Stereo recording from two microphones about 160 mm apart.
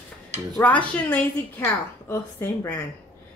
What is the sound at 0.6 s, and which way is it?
A woman's voice, 10° left (ahead or behind).